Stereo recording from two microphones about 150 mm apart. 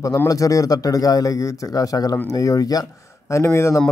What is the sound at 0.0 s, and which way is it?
A man's voice, 25° left (ahead or behind).